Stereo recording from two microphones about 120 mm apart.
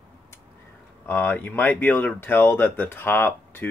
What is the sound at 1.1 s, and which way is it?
Speech, 15° left (ahead or behind).